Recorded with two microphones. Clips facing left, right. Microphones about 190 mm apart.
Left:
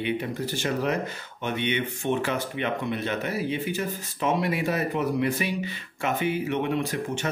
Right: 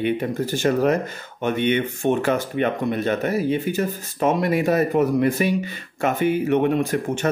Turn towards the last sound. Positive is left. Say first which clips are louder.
# right 6 dB
turn(degrees=-50)  # may be behind; listen again after turning